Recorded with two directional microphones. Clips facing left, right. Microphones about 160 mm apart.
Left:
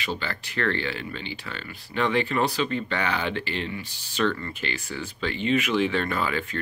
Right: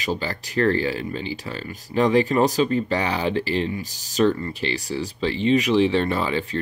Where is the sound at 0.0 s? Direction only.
40° right (ahead or behind).